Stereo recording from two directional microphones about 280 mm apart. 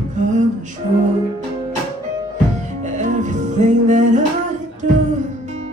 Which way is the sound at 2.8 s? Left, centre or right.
Right.